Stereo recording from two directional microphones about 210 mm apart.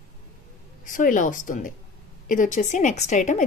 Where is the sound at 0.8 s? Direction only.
40° left (ahead or behind).